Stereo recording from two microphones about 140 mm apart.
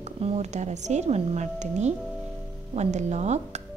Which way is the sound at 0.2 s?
50° right (ahead or behind).